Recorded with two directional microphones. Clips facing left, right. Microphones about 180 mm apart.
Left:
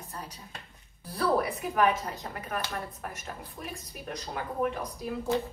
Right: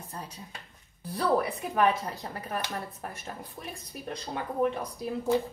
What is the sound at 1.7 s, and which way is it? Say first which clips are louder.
Speech: right 1 dB; 30° right (ahead or behind).